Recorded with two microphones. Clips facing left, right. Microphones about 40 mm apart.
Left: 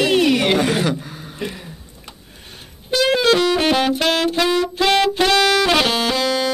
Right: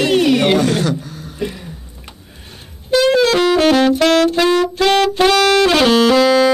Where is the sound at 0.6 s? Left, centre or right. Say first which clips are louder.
Right 2 dB; centre.